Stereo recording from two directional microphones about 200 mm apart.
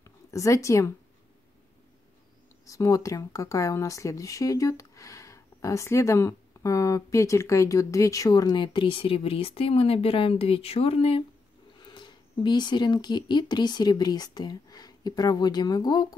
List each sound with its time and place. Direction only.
0.3 s speech: 15° left (ahead or behind)
2.6 s speech: 15° left (ahead or behind)